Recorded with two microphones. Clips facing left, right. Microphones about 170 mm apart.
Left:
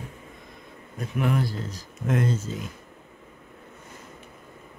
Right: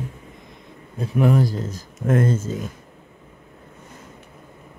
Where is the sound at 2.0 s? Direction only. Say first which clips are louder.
Right 5 dB; 50° right (ahead or behind).